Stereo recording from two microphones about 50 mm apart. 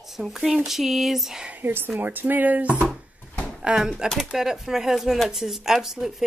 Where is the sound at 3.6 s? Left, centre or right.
Centre.